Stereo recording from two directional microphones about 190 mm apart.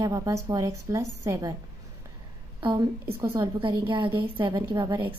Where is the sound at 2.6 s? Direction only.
20° right (ahead or behind).